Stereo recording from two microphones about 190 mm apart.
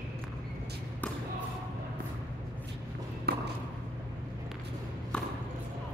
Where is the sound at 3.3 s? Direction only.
55° right (ahead or behind).